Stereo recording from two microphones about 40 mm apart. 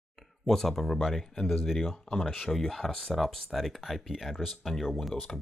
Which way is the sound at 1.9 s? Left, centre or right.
Centre.